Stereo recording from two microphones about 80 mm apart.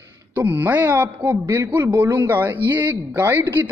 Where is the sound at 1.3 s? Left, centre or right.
Right.